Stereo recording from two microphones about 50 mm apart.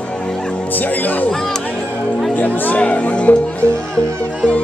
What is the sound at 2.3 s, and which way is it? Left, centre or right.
Music, left.